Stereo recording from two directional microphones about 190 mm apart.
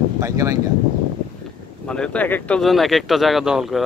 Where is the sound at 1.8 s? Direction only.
5° left (ahead or behind).